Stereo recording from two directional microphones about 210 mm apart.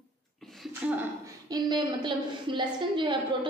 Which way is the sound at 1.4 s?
20° right (ahead or behind).